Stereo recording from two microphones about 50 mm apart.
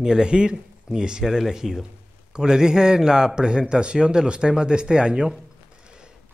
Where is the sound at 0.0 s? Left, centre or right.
Centre.